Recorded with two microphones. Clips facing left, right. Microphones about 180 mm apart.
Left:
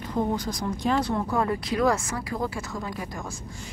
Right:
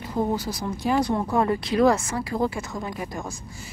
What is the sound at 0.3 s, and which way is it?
Speech, 5° right (ahead or behind).